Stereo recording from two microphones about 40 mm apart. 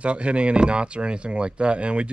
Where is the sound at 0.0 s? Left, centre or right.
Right.